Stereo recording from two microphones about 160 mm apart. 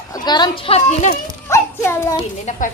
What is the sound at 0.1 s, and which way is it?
Speech, 25° left (ahead or behind).